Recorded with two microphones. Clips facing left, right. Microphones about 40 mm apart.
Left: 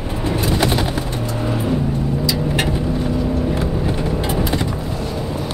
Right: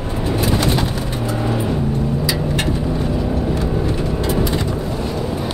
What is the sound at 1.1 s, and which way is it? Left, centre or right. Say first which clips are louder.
Vehicle: right 2 dB; centre.